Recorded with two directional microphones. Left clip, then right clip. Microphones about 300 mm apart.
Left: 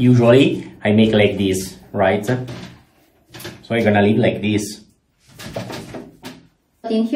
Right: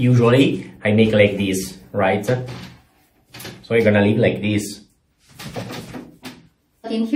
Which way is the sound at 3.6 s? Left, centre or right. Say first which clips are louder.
Even; centre.